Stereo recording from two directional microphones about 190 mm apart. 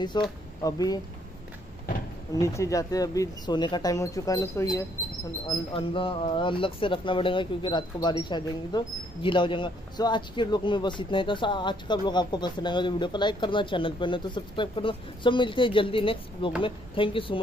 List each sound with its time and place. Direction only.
0.2 s speech: 20° left (ahead or behind)
2.3 s speech: 15° left (ahead or behind)